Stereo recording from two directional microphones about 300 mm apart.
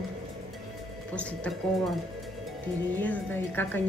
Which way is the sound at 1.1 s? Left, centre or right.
Centre.